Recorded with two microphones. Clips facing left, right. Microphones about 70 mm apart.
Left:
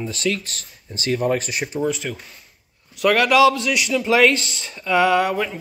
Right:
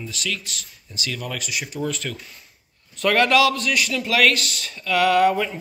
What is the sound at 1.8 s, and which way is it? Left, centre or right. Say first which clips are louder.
A man's voice: left 5 dB; centre.